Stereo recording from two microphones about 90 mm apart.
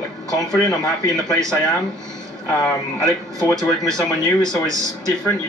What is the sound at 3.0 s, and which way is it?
Speech, 40° right (ahead or behind).